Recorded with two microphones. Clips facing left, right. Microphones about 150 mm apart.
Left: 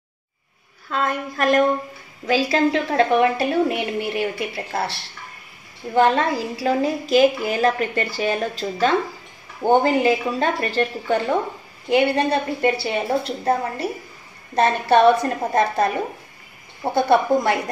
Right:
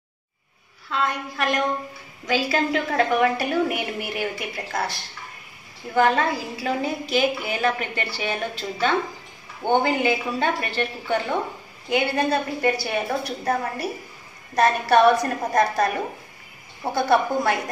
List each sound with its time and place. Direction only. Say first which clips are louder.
0.8 s a woman's voice: left 2 dB; 45° left (ahead or behind)
2.2 s a woman's voice: left 4 dB; 30° left (ahead or behind)